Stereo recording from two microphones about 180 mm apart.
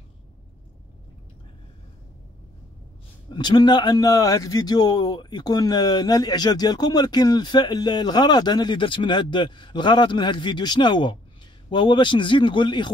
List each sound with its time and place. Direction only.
3.3 s a man's voice: 25° left (ahead or behind)